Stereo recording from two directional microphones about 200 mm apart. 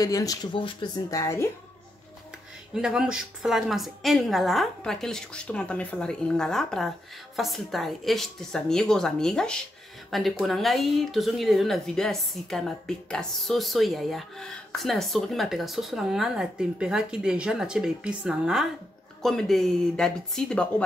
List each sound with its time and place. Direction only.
0.0 s a woman's voice: 15° left (ahead or behind)
2.7 s speech: 5° right (ahead or behind)